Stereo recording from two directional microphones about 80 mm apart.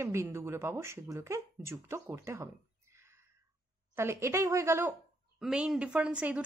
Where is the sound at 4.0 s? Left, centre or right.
Right.